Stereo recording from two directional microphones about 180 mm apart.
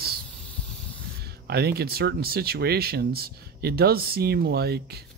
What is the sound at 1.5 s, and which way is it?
Speech, 60° right (ahead or behind).